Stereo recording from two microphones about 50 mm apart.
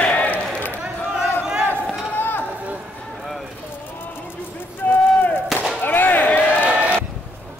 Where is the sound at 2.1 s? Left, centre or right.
Left.